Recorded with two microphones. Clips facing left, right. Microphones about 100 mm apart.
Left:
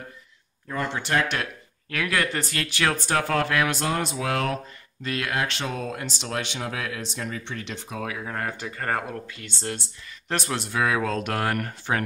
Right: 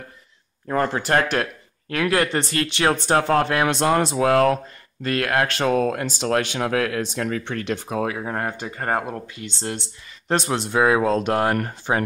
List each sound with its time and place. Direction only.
0.8 s speech: 45° right (ahead or behind)
4.2 s speech: 45° right (ahead or behind)
8.5 s speech: 25° right (ahead or behind)